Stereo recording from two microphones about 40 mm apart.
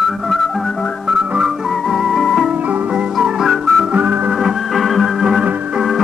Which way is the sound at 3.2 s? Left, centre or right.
Centre.